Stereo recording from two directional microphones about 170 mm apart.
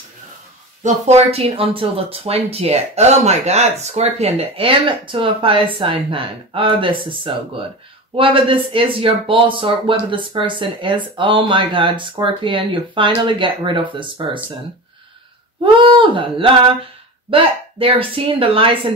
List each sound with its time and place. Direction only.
0.8 s speech: 40° right (ahead or behind)
15.6 s speech: 30° right (ahead or behind)